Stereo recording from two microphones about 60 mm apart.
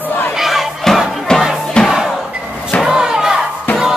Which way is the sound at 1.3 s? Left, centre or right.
Centre.